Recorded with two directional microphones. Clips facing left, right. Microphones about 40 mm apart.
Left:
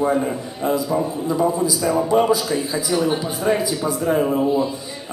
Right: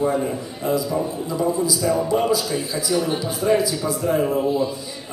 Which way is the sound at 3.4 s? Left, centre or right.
Left.